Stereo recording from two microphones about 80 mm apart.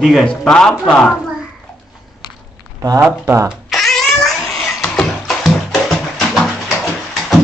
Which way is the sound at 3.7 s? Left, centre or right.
Centre.